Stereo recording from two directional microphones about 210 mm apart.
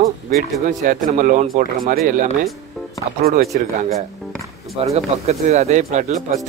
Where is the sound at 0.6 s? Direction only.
40° right (ahead or behind).